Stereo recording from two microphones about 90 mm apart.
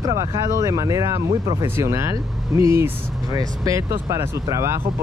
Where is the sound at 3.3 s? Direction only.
40° right (ahead or behind).